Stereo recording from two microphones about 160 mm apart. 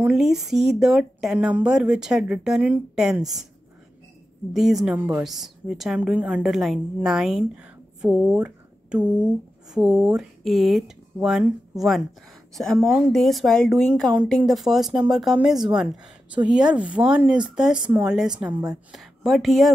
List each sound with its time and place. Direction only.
0.0 s speech: centre (ahead or behind)
4.6 s a woman's voice: centre (ahead or behind)